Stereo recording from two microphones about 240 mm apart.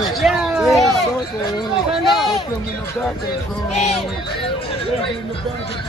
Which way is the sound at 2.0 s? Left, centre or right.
Centre.